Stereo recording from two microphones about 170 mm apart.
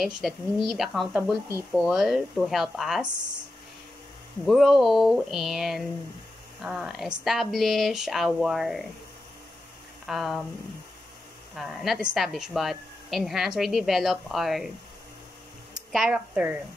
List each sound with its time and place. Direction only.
0.0 s speech: centre (ahead or behind)
3.1 s speech: 25° right (ahead or behind)
4.5 s speech: centre (ahead or behind)
10.0 s speech: centre (ahead or behind)
11.5 s speech: centre (ahead or behind)
15.7 s speech: centre (ahead or behind)